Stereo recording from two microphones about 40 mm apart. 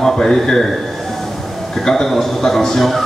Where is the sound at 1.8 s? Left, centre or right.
Centre.